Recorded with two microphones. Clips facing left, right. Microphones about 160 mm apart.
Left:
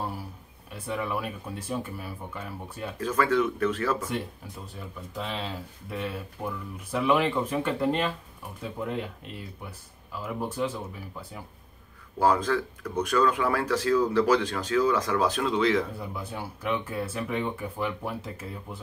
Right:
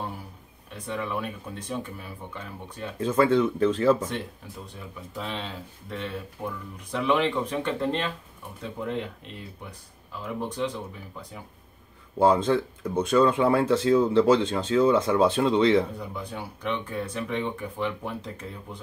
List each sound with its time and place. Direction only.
0.7 s speech: 5° left (ahead or behind)
3.0 s speech: 30° right (ahead or behind)
4.7 s speech: centre (ahead or behind)
12.2 s speech: 25° right (ahead or behind)
16.0 s speech: 5° left (ahead or behind)